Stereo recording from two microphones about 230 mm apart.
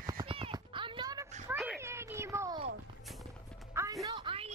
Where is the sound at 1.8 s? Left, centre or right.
Centre.